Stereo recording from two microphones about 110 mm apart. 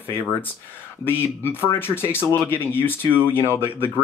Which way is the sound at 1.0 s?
20° left (ahead or behind).